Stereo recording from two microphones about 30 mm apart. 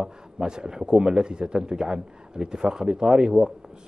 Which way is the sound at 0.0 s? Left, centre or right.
Right.